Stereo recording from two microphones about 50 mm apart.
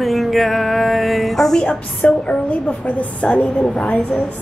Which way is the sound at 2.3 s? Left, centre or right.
Left.